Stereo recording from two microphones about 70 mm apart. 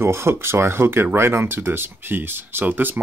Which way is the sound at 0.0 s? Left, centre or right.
Right.